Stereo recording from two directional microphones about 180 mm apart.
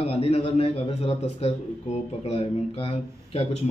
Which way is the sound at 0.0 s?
35° left (ahead or behind).